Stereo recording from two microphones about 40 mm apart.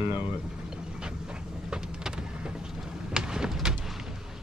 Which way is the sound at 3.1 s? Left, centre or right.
Centre.